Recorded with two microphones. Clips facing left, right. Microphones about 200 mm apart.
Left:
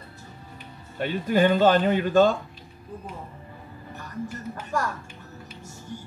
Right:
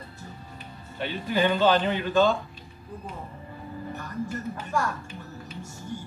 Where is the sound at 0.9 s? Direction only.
45° left (ahead or behind).